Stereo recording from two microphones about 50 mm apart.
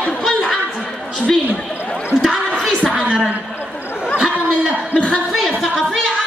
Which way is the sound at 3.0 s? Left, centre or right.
Right.